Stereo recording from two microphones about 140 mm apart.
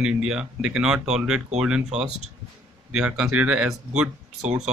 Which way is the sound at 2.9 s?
5° right (ahead or behind).